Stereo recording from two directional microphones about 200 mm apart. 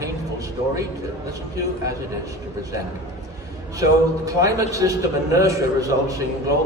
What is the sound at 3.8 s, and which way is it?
A man's voice, 15° right (ahead or behind).